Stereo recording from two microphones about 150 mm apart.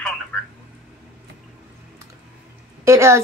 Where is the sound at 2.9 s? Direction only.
20° right (ahead or behind).